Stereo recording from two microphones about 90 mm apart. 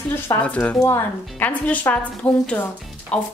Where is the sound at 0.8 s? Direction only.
35° left (ahead or behind).